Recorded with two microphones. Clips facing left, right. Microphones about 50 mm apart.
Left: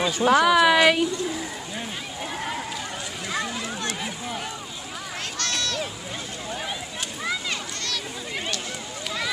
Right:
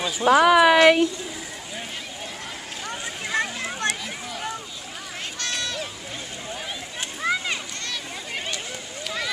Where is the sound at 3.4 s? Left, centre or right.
Right.